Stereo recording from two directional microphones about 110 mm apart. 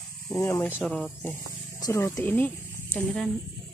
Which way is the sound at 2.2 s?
15° left (ahead or behind).